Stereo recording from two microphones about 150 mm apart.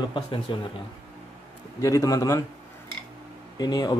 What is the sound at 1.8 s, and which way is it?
Speech, 20° left (ahead or behind).